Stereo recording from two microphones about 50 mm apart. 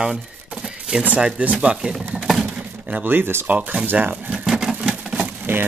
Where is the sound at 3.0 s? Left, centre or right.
Right.